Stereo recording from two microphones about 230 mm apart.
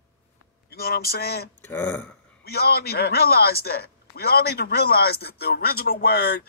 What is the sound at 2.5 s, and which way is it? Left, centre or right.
A man's voice, left.